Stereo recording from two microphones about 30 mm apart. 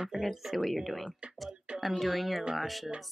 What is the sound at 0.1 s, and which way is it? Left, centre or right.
Speech, right.